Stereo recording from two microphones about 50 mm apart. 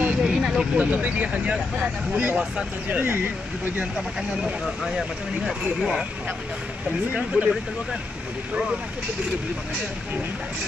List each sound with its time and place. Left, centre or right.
0.2 s vehicle: centre
0.7 s speech: right
2.3 s speech: centre
4.8 s speech: centre
7.3 s speech: right